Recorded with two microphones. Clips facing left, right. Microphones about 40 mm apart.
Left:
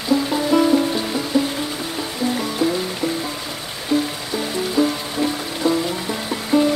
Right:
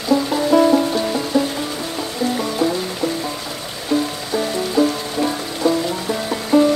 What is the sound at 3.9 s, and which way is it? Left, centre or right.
Music, centre.